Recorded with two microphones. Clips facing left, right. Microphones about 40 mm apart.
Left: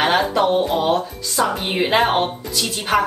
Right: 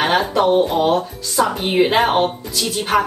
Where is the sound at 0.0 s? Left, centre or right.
Centre.